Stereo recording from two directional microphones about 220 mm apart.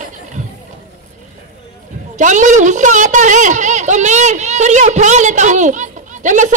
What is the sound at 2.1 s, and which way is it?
A woman's voice, 35° right (ahead or behind).